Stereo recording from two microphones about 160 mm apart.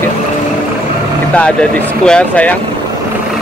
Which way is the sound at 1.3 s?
5° left (ahead or behind).